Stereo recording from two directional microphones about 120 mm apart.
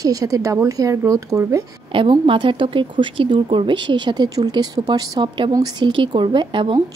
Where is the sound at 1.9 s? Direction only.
45° right (ahead or behind).